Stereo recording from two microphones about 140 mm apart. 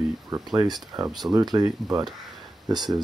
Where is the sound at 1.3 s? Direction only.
30° right (ahead or behind).